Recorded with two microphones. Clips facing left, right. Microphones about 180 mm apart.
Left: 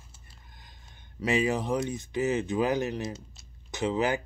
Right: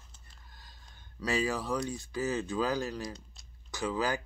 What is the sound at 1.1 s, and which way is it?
Speech, 20° left (ahead or behind).